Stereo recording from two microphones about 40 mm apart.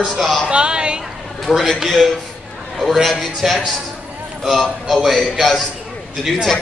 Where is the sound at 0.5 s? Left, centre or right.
Right.